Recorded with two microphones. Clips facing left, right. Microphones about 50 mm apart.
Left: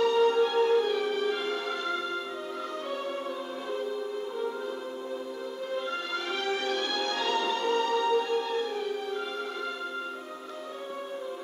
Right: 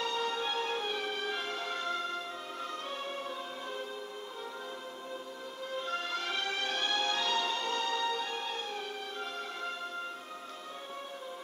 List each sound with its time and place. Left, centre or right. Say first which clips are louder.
0.0 s music: left 11 dB; left
0.8 s music: left 7 dB; right
1.4 s music: left 6 dB; left
5.8 s music: left 1 dB; left